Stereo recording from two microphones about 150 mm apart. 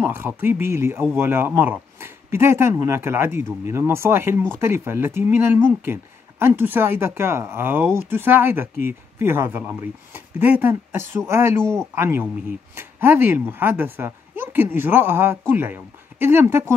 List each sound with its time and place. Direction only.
0.1 s speech: 15° right (ahead or behind)